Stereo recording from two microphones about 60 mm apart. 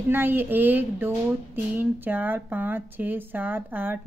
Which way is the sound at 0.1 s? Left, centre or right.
Right.